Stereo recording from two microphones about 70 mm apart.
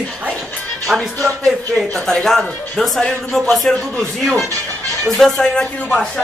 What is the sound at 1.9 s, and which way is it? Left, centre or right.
Speech, centre.